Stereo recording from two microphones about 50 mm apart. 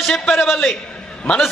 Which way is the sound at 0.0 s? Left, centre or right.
Centre.